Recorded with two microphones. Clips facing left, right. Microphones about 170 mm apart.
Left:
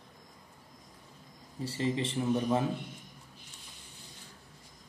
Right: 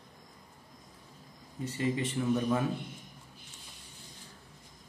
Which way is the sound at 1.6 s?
30° left (ahead or behind).